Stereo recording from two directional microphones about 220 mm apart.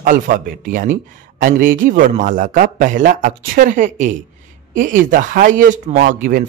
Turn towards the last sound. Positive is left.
turn(degrees=-40)  # may be behind; listen again after turning